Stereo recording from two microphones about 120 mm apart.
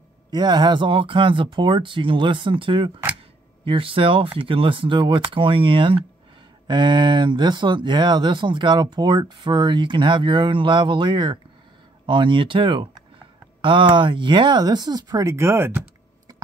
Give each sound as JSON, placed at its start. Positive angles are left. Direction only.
{"t": 0.3, "sound": "speech", "side_deg": -35}